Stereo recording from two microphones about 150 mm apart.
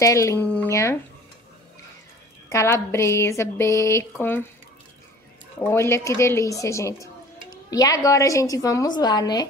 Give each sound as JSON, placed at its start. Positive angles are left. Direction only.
{"t": 0.0, "sound": "a woman's voice", "side_deg": 20}
{"t": 2.5, "sound": "speech", "side_deg": 15}
{"t": 5.6, "sound": "a woman's voice", "side_deg": 15}